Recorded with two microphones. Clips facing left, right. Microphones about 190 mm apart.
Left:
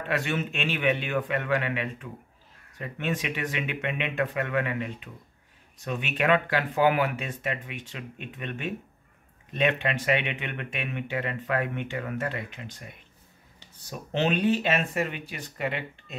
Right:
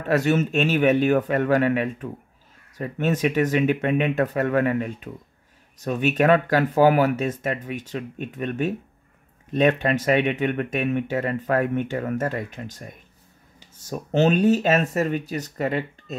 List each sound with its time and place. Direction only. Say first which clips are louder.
0.0 s speech: right 8 dB; 40° right (ahead or behind)